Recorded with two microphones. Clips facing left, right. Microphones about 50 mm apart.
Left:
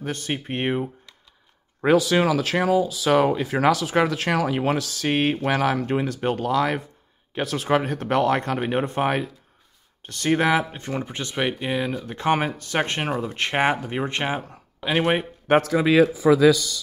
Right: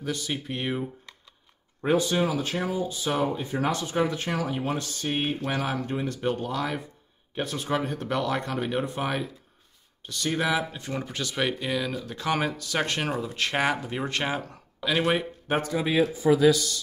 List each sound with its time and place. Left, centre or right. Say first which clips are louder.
0.0 s speech: left 3 dB; left
1.8 s speech: left 5 dB; left
10.9 s speech: left 3 dB; left
15.4 s speech: left 11 dB; left